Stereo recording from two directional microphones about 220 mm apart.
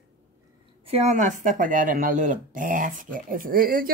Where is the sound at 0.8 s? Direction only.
30° right (ahead or behind).